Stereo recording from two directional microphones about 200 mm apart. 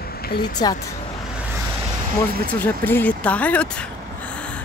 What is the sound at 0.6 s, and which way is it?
Speech, 20° left (ahead or behind).